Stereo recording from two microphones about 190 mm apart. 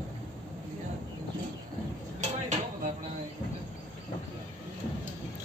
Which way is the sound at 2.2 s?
40° right (ahead or behind).